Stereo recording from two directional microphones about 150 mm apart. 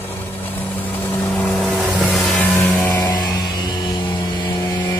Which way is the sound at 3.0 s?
25° left (ahead or behind).